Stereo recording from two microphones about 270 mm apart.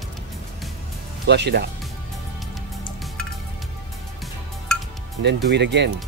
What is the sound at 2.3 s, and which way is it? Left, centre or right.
Music, centre.